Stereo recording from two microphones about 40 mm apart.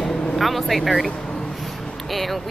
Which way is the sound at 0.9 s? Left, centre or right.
Centre.